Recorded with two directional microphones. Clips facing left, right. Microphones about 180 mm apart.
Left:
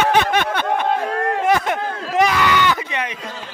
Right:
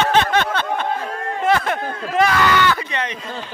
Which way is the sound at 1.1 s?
65° left (ahead or behind).